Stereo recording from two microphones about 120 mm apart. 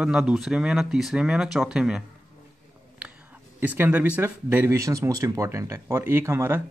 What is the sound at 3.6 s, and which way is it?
A man's voice, 15° right (ahead or behind).